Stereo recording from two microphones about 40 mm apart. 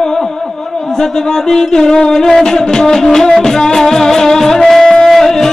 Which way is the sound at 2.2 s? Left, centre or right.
Centre.